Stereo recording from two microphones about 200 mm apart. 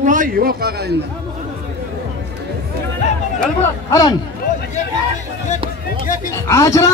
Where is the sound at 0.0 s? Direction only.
40° right (ahead or behind).